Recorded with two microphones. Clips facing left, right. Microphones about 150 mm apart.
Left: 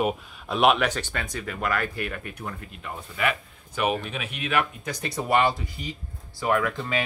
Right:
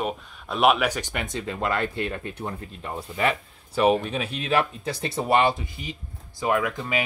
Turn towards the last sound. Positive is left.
turn(degrees=-15)  # may be behind; listen again after turning